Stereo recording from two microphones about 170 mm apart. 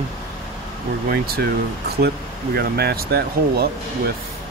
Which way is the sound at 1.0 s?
65° right (ahead or behind).